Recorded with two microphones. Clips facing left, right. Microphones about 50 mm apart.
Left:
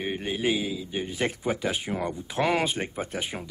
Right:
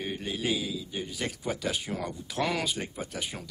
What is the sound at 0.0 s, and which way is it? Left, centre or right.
Speech, left.